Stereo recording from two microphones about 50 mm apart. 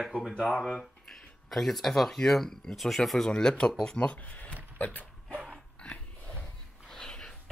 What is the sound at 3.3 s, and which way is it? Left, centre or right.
Speech, centre.